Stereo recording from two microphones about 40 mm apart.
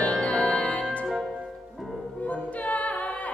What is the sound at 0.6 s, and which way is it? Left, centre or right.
Music, left.